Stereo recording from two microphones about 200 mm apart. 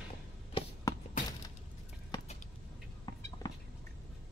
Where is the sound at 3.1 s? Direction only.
15° left (ahead or behind).